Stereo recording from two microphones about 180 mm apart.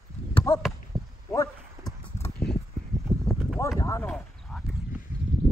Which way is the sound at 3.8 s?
15° left (ahead or behind).